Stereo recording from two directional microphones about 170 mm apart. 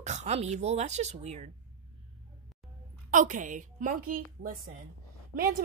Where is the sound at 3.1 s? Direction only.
50° right (ahead or behind).